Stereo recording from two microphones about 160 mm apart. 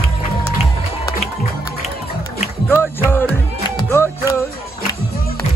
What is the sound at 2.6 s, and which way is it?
Music, 15° left (ahead or behind).